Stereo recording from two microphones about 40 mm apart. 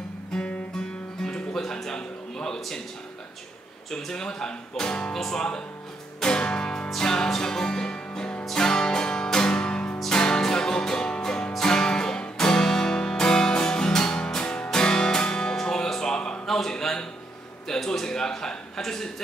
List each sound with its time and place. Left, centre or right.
0.3 s guitar: left
1.2 s music: centre
3.9 s speech: centre
6.2 s music: left
16.4 s a sound: centre
17.6 s speech: centre